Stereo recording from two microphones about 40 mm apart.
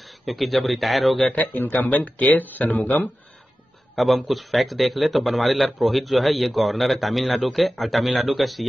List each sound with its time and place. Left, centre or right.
0.2 s a man's voice: centre
1.3 s speech: left
3.9 s a man's voice: centre